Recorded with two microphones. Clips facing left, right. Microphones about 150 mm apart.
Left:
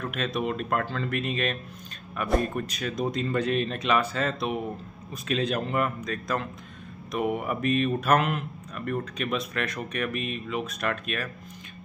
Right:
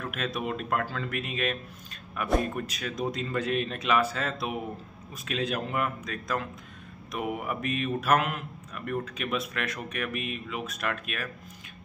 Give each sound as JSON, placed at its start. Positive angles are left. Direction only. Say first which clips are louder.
{"t": 0.0, "sound": "speech", "louder": "left 3 dB", "side_deg": -5}